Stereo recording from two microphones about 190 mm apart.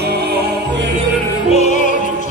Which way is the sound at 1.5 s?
35° left (ahead or behind).